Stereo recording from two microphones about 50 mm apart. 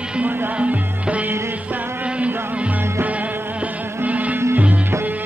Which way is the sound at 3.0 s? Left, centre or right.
Right.